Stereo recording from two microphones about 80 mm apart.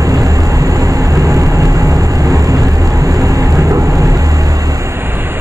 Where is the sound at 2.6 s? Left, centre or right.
Centre.